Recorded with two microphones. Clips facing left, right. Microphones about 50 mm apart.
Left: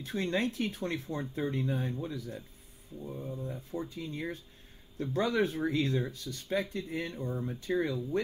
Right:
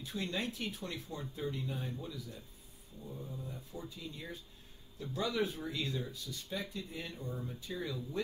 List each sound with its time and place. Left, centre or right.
0.0 s speech: left
7.2 s speech: left
7.4 s speech: left